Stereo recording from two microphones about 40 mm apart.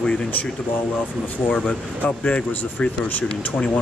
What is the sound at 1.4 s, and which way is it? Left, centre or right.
Speech, left.